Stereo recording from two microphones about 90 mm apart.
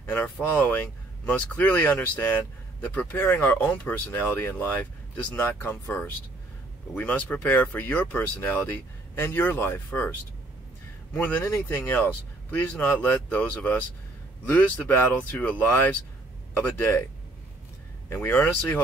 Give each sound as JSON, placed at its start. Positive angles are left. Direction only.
{"t": 0.4, "sound": "speech", "side_deg": 20}
{"t": 11.1, "sound": "speech", "side_deg": 20}
{"t": 16.5, "sound": "speech", "side_deg": 25}
{"t": 18.1, "sound": "speech", "side_deg": 20}